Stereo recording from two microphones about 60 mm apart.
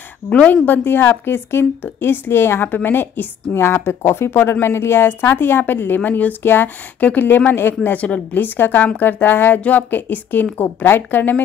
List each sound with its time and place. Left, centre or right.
0.3 s a woman's voice: left
0.7 s speech: left
8.0 s speech: left